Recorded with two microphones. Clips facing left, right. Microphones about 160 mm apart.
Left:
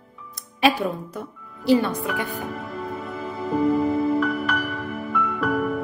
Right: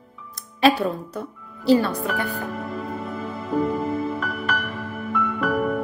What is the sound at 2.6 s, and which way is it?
Music, centre (ahead or behind).